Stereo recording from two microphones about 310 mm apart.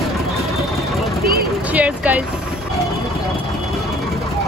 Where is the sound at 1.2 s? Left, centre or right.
Right.